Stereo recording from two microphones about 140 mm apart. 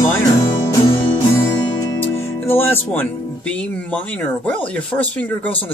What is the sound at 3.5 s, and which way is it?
Speech, 10° left (ahead or behind).